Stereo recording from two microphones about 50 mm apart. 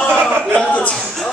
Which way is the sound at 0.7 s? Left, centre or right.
Left.